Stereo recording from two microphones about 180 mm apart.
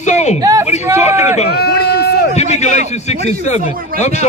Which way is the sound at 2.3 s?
40° left (ahead or behind).